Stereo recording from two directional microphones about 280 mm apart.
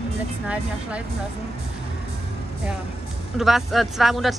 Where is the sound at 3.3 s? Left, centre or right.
Centre.